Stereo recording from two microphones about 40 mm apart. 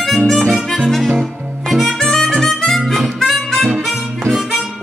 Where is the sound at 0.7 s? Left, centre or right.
Centre.